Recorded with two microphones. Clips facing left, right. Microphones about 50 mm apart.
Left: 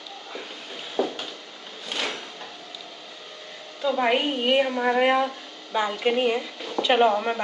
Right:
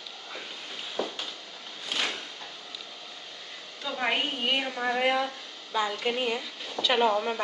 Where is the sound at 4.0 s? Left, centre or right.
Centre.